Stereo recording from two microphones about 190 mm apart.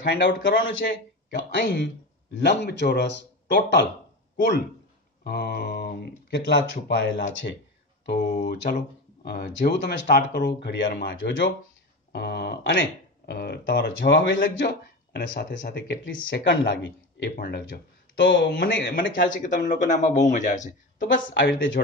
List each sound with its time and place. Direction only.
0.0 s speech: 70° left (ahead or behind)
5.2 s speech: 55° left (ahead or behind)
8.3 s speech: 40° left (ahead or behind); by 11.5 s 75° left (ahead or behind)
12.1 s speech: 60° left (ahead or behind)
15.2 s speech: 45° left (ahead or behind)
16.6 s speech: 65° left (ahead or behind); by 20.7 s 40° left (ahead or behind)
21.1 s speech: 70° left (ahead or behind)